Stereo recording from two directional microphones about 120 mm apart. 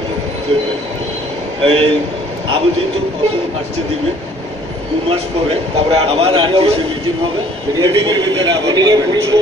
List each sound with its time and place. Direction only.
1.6 s a man's voice: 50° right (ahead or behind)
5.0 s a man's voice: 55° right (ahead or behind)
7.7 s a man's voice: 35° right (ahead or behind)